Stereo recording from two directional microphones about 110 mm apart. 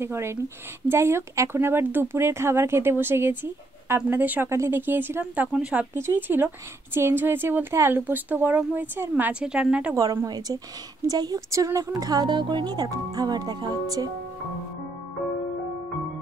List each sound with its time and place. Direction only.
0.0 s speech: 25° right (ahead or behind)
10.2 s a woman's voice: 35° right (ahead or behind)